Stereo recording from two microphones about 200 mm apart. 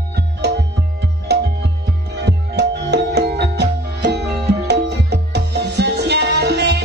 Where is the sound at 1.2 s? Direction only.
55° right (ahead or behind).